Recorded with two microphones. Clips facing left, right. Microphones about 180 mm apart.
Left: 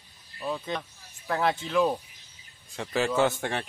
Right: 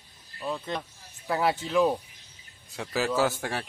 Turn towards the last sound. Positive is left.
turn(degrees=0)  # may be behind; listen again after turning